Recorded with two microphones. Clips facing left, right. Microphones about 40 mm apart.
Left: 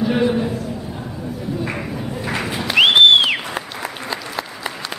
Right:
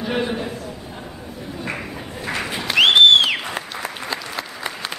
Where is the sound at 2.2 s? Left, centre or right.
Centre.